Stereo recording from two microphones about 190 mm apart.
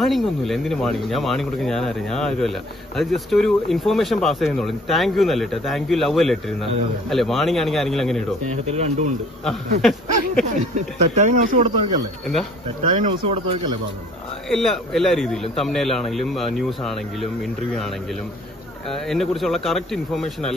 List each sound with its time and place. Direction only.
0.0 s speech: centre (ahead or behind)
8.6 s speech: 35° right (ahead or behind)
9.4 s speech: centre (ahead or behind)
11.1 s speech: 40° right (ahead or behind)
13.0 s speech: 30° right (ahead or behind)
14.5 s speech: centre (ahead or behind)
18.9 s speech: centre (ahead or behind)